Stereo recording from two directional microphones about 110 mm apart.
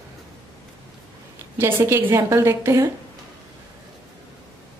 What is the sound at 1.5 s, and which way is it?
A woman's voice, 20° right (ahead or behind).